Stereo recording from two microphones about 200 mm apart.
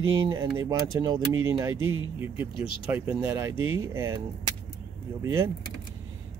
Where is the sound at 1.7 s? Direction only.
90° right.